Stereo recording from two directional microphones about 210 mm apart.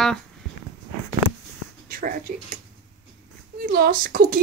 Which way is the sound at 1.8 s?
40° right (ahead or behind).